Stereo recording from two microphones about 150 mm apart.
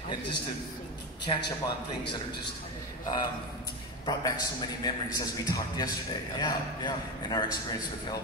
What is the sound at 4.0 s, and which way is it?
A man's voice, 30° left (ahead or behind).